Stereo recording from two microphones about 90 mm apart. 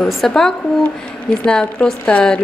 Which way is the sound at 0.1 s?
5° left (ahead or behind).